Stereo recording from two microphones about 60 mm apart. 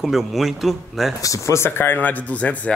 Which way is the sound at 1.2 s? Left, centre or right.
Left.